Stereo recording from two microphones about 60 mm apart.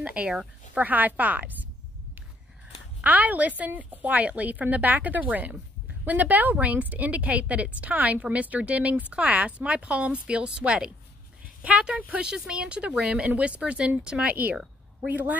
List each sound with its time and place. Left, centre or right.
0.0 s a woman's voice: right
3.0 s a woman's voice: right